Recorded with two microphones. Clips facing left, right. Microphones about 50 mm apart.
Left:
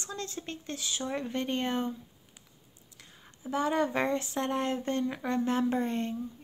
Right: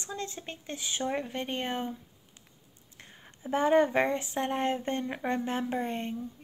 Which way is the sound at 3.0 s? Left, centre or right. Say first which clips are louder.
Right 1 dB; right.